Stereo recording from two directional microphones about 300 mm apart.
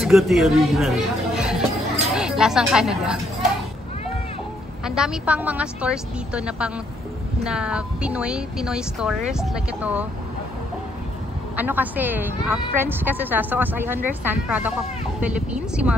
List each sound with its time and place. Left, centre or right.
0.0 s speech: centre
4.8 s speech: centre
11.5 s a woman's voice: centre